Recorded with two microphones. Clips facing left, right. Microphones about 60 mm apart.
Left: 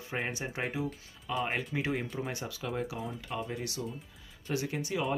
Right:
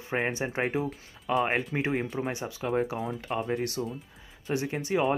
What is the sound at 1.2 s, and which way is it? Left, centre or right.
Speech, right.